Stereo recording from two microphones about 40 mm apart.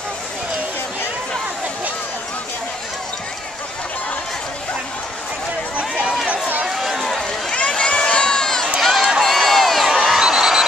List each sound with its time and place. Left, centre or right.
5.8 s run: right
6.7 s run: centre
7.5 s run: left
7.9 s crowd: left
8.8 s a sound: centre
9.2 s crowd: centre
9.8 s a sound: centre